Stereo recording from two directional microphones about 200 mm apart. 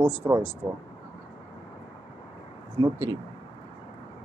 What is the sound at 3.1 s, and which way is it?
Speech, 90° right.